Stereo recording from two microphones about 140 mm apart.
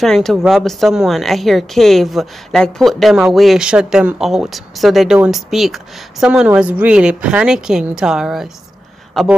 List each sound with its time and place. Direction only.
0.0 s a woman's voice: centre (ahead or behind)